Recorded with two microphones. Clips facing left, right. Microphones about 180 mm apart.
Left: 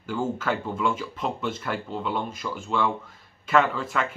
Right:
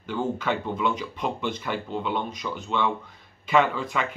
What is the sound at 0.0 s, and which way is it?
Speech, 5° left (ahead or behind).